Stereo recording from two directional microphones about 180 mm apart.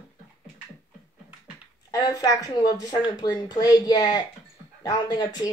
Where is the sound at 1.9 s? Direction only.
20° left (ahead or behind).